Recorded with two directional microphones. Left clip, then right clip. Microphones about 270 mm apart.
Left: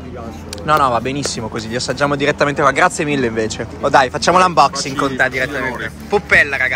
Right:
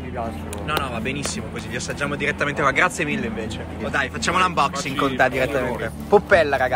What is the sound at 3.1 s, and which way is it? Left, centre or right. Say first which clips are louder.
Speech: left 9 dB; left.